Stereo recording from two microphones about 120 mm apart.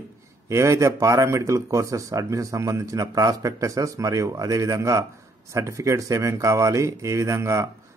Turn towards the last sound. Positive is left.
turn(degrees=-25)  # may be behind; listen again after turning